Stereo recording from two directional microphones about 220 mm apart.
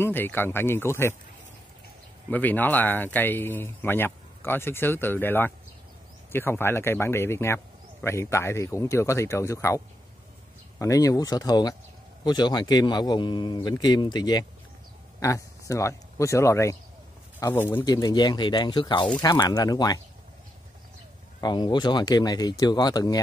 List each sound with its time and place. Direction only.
0.0 s speech: 10° left (ahead or behind)
2.2 s speech: 10° left (ahead or behind)
10.8 s speech: 15° left (ahead or behind)
21.4 s speech: 20° left (ahead or behind)